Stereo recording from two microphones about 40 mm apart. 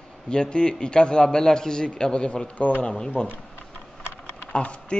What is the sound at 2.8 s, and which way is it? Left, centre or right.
Speech, left.